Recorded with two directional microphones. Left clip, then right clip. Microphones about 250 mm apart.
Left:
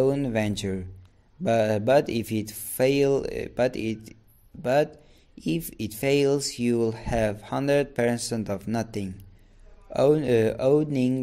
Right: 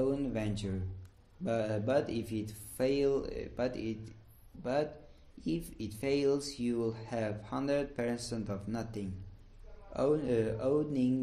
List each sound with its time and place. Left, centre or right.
0.0 s speech: left